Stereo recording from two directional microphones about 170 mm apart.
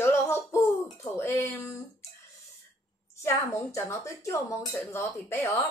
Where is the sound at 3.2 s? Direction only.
15° left (ahead or behind).